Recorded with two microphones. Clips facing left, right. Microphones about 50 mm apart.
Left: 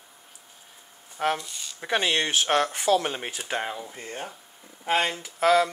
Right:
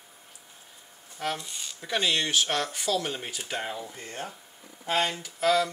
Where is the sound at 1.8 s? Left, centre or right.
Left.